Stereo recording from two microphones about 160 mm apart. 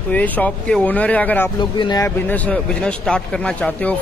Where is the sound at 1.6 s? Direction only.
25° left (ahead or behind).